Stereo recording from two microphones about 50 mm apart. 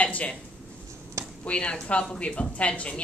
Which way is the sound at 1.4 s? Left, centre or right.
Left.